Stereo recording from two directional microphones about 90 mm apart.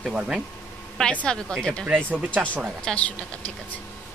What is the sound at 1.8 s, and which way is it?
Speech, 15° right (ahead or behind).